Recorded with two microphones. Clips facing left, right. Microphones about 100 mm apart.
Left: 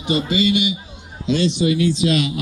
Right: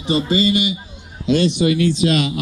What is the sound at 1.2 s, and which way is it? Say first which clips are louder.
A man's voice: right 2 dB; 55° right (ahead or behind).